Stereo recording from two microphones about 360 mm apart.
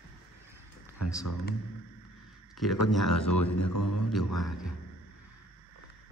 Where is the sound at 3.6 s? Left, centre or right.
Left.